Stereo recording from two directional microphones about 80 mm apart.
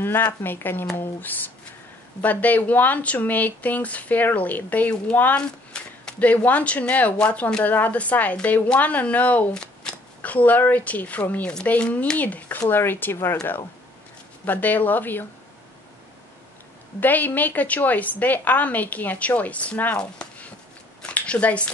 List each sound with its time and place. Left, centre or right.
0.0 s speech: left
14.4 s speech: left
17.0 s speech: left
20.0 s chopping: centre
21.0 s a sound: centre